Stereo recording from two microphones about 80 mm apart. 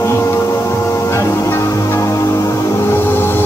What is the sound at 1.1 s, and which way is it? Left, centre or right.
Music, left.